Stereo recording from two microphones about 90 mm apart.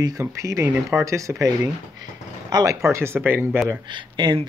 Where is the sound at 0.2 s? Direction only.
35° right (ahead or behind).